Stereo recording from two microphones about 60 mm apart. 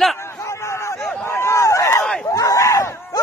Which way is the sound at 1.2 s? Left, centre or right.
Left.